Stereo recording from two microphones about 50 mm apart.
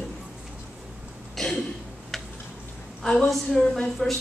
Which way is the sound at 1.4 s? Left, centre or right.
Centre.